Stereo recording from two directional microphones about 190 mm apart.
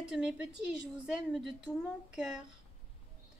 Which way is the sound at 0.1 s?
Centre (ahead or behind).